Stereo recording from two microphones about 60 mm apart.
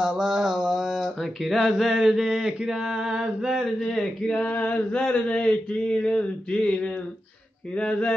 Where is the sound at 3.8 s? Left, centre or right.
Centre.